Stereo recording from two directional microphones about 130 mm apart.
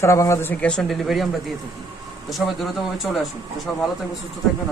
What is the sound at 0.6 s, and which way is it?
Speech, 5° left (ahead or behind).